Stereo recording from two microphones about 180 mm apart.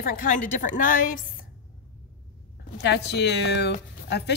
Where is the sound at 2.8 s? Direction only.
70° left (ahead or behind).